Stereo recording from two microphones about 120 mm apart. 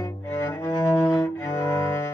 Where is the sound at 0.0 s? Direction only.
25° left (ahead or behind).